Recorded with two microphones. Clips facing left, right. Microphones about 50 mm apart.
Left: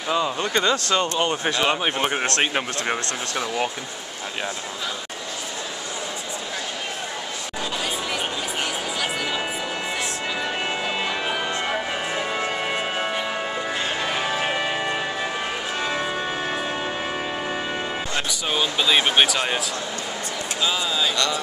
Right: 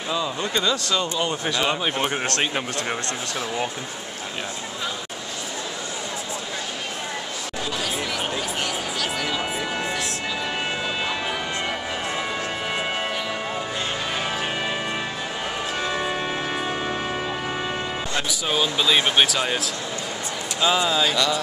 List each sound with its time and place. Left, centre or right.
0.1 s speech: left
1.7 s speech: left
11.2 s music: centre
14.1 s music: centre
18.5 s speech: centre
20.6 s speech: centre